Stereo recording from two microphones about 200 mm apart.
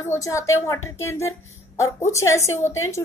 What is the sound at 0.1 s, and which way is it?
A woman's voice, 15° left (ahead or behind).